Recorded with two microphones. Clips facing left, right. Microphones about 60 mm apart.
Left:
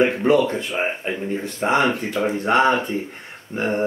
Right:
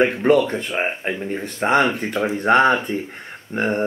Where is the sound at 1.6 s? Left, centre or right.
Right.